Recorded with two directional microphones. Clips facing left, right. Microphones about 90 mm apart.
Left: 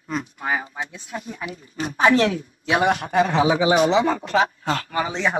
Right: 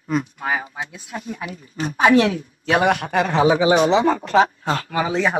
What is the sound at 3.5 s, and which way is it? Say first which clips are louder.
A woman's voice: right 2 dB; 30° right (ahead or behind).